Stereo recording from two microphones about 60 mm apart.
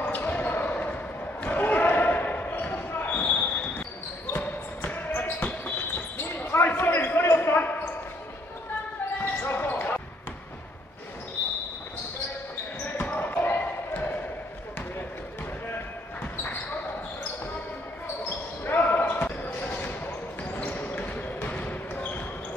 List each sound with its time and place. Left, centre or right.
0.0 s basketball bounce: left
9.2 s basketball bounce: left
13.0 s basketball bounce: left
18.7 s basketball bounce: left
20.7 s basketball bounce: left